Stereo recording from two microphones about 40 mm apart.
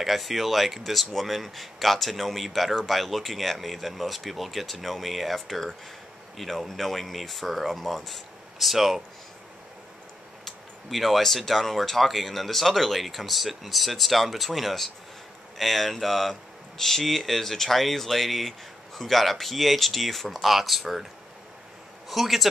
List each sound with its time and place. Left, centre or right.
0.0 s speech: centre
10.4 s speech: centre
22.1 s speech: centre